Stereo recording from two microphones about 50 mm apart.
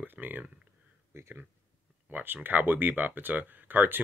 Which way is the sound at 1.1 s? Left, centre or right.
Right.